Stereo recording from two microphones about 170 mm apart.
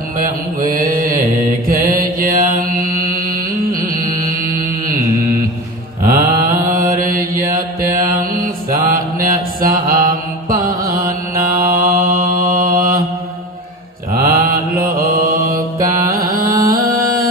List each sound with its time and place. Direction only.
0.2 s mantra: 55° right (ahead or behind)
6.0 s mantra: 55° right (ahead or behind)
14.1 s mantra: 55° right (ahead or behind)